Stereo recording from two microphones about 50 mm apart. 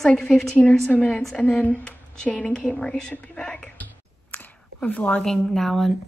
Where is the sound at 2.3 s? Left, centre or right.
Centre.